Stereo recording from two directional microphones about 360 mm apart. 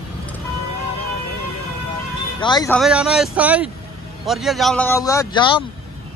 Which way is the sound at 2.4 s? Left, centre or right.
Centre.